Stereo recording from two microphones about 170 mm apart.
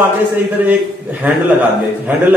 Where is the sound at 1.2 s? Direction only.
10° right (ahead or behind).